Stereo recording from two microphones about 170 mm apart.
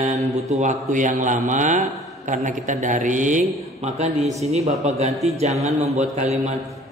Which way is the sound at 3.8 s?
40° right (ahead or behind).